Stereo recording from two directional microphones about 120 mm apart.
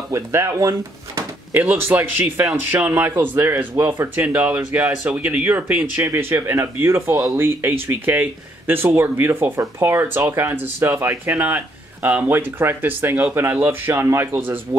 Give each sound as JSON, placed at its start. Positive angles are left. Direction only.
{"t": 0.1, "sound": "speech", "side_deg": -25}
{"t": 1.5, "sound": "speech", "side_deg": -15}